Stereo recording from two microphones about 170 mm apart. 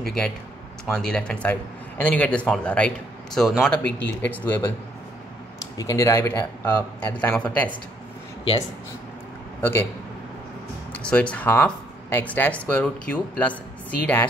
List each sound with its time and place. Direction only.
0.8 s a man's voice: 5° left (ahead or behind)
5.8 s a man's voice: 20° left (ahead or behind)
9.6 s a man's voice: 15° left (ahead or behind)
10.9 s speech: 5° left (ahead or behind)